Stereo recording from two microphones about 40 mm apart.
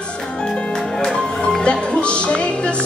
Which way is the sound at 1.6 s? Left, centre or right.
Left.